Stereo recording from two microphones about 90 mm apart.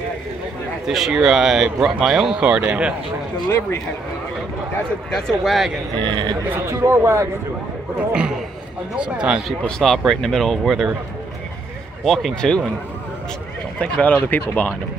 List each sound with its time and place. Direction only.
0.8 s speech: 5° right (ahead or behind)
3.4 s speech: 35° left (ahead or behind)
5.1 s speech: centre (ahead or behind)
5.9 s speech: 60° right (ahead or behind)
6.5 s speech: 25° right (ahead or behind)
8.1 s speech: 10° right (ahead or behind)
9.5 s speech: 5° left (ahead or behind)
12.0 s speech: centre (ahead or behind)
13.7 s speech: 15° left (ahead or behind)